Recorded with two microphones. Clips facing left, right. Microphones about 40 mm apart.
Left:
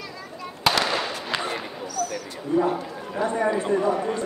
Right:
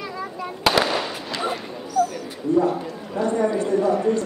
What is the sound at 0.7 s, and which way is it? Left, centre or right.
Fireworks, centre.